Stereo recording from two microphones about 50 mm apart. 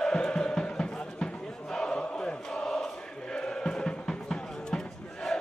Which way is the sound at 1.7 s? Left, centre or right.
Centre.